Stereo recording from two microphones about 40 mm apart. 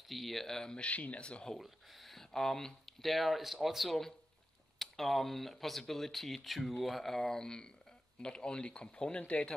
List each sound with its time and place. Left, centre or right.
0.1 s speech: centre
0.7 s speech: left
1.6 s a sound: centre
2.3 s speech: centre; by 9.5 s left